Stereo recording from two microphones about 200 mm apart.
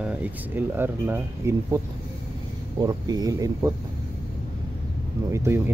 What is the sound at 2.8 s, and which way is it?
Speech, 20° right (ahead or behind).